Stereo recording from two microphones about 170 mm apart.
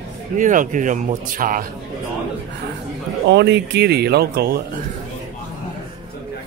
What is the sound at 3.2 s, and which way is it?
Speech, 90° right.